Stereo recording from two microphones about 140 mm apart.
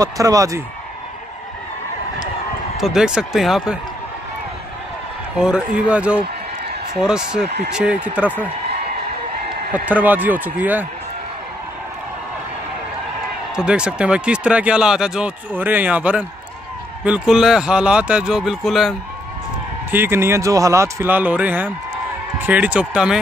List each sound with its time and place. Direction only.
0.0 s speech: 25° right (ahead or behind)
2.8 s speech: 5° right (ahead or behind)
5.4 s speech: 5° right (ahead or behind)
9.8 s speech: 10° right (ahead or behind)
13.6 s speech: 5° right (ahead or behind)
19.9 s speech: 15° right (ahead or behind)